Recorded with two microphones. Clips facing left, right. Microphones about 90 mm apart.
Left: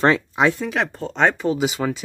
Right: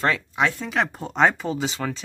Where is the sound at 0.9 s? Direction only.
10° right (ahead or behind); by 2.0 s 10° left (ahead or behind).